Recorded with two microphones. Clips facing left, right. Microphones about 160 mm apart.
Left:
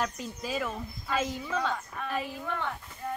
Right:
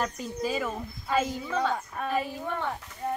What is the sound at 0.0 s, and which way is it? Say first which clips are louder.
Speech: right 3 dB; centre (ahead or behind).